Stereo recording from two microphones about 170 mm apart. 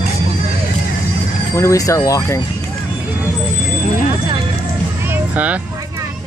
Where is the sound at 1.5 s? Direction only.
15° left (ahead or behind).